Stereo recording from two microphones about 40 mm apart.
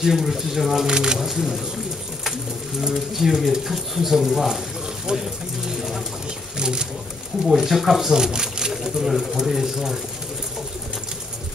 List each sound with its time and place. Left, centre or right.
0.0 s speech: centre
2.8 s speech: centre
6.6 s speech: right
7.5 s speech: centre